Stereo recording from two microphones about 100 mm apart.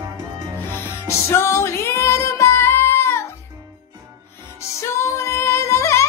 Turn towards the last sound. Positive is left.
turn(degrees=30)  # may be behind; listen again after turning